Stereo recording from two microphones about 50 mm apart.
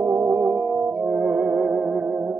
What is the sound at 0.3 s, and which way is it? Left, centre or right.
Music, right.